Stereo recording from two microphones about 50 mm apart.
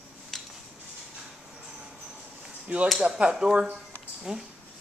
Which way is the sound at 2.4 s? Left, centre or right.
Right.